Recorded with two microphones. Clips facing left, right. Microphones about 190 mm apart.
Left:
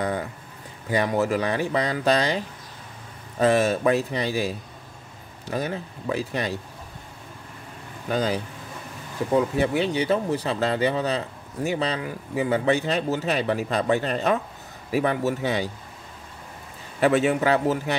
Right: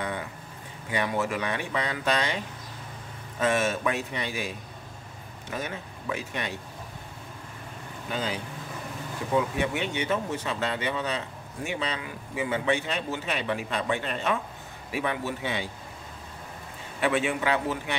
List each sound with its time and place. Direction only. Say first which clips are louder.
0.8 s speech: left 5 dB; 40° left (ahead or behind)
8.1 s speech: left 7 dB; 40° left (ahead or behind)
17.0 s speech: left 6 dB; 40° left (ahead or behind)